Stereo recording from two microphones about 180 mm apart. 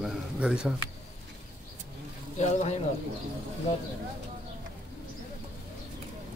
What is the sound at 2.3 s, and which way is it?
Speech, 40° left (ahead or behind).